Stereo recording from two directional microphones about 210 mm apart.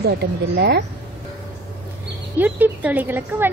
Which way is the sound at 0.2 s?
50° right (ahead or behind).